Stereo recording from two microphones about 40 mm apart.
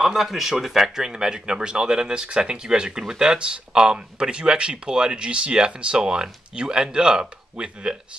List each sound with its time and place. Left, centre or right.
0.0 s speech: centre; by 8.0 s right